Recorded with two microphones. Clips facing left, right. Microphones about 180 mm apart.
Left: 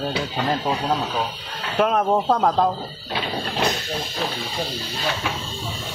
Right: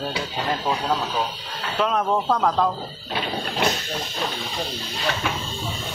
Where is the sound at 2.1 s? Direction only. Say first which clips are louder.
Left 2 dB; 30° left (ahead or behind).